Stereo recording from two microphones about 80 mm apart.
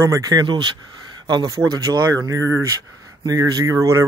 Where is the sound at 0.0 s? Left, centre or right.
Right.